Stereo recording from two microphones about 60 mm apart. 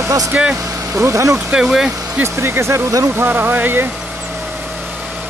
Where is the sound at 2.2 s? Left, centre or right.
Right.